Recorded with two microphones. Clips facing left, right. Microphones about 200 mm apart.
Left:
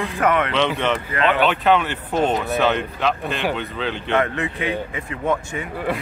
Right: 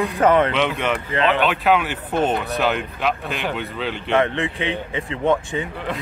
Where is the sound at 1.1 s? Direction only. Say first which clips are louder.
Right 3 dB; 25° right (ahead or behind).